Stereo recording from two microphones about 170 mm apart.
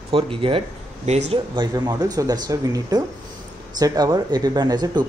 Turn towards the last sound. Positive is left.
turn(degrees=-25)  # may be behind; listen again after turning